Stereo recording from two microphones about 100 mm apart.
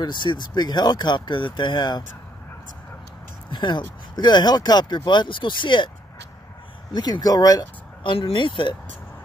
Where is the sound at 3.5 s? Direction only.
45° left (ahead or behind).